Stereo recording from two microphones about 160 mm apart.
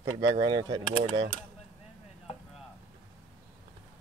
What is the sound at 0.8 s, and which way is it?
Mechanisms, 55° left (ahead or behind).